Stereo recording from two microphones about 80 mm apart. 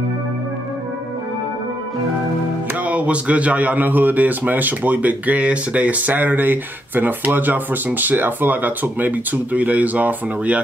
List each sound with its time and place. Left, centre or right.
2.8 s speech: centre